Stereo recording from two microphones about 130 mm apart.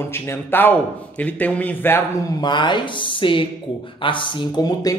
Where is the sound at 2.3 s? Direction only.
35° left (ahead or behind).